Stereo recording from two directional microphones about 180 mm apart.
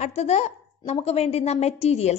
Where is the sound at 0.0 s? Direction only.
40° left (ahead or behind).